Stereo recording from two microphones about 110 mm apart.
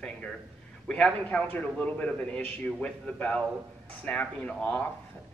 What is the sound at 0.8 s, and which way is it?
Speech, 10° left (ahead or behind).